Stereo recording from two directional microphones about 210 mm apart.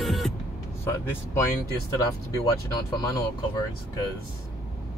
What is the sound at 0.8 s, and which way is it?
Vehicle, 10° left (ahead or behind).